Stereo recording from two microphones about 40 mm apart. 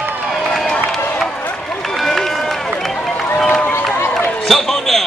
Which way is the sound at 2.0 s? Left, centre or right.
Centre.